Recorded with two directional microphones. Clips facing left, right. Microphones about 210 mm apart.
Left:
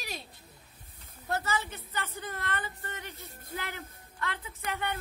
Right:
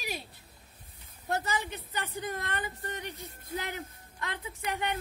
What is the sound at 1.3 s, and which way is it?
A woman's voice, 15° right (ahead or behind).